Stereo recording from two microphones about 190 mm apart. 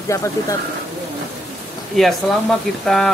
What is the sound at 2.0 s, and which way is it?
Speech, centre (ahead or behind).